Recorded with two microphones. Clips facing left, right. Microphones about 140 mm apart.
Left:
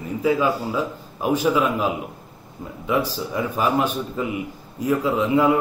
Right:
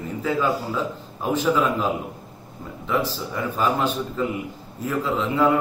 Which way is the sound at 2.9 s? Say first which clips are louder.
Left 2 dB; 10° left (ahead or behind).